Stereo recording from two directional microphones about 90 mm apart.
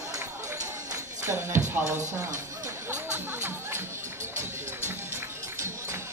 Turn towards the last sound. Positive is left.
turn(degrees=-30)  # may be behind; listen again after turning